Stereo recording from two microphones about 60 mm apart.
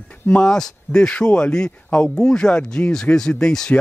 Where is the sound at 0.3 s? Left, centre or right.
Centre.